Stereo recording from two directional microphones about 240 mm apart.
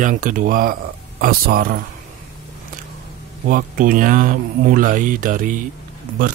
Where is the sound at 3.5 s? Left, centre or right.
Right.